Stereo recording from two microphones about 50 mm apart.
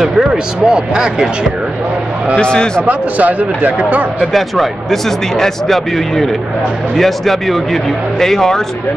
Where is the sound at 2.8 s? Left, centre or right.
Right.